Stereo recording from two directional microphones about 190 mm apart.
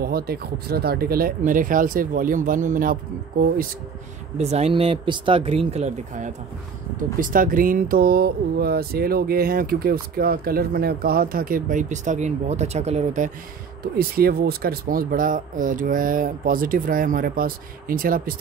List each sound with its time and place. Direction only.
0.0 s speech: 55° right (ahead or behind)
4.4 s speech: 35° right (ahead or behind)
13.9 s speech: 50° right (ahead or behind)